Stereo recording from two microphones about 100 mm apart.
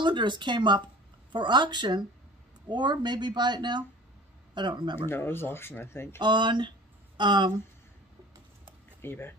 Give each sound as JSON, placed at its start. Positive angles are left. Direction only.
{"t": 0.0, "sound": "speech", "side_deg": -50}
{"t": 5.0, "sound": "speech", "side_deg": 20}
{"t": 6.1, "sound": "speech", "side_deg": -50}
{"t": 9.0, "sound": "speech", "side_deg": 20}